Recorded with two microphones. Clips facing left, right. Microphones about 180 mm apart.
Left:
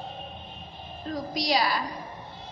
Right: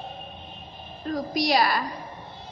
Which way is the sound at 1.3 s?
55° right (ahead or behind).